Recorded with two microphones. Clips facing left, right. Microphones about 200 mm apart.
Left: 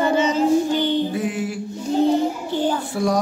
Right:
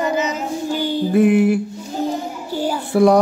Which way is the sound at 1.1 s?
60° right (ahead or behind).